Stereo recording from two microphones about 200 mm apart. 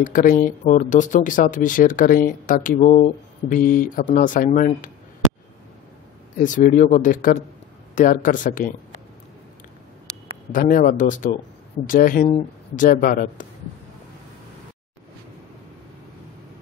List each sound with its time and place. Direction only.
0.0 s speech: 45° left (ahead or behind)
6.4 s speech: 40° left (ahead or behind)
10.5 s speech: 45° left (ahead or behind)